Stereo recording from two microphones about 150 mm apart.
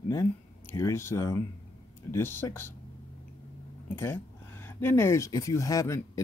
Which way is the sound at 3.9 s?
15° left (ahead or behind).